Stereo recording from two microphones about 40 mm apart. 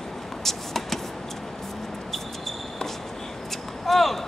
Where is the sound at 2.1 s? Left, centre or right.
Centre.